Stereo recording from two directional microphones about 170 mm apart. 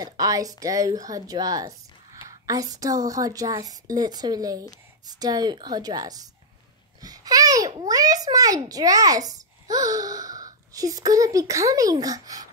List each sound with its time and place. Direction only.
0.0 s a child's voice: 20° right (ahead or behind)
7.0 s babbling: 20° right (ahead or behind)
7.8 s a child's voice: 20° right (ahead or behind)